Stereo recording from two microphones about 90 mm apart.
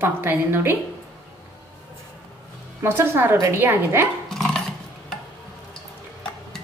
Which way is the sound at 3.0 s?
25° right (ahead or behind).